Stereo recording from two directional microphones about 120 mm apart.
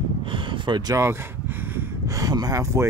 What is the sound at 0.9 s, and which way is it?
Speech, 25° right (ahead or behind).